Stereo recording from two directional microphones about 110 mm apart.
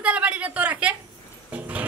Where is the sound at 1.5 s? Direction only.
15° right (ahead or behind).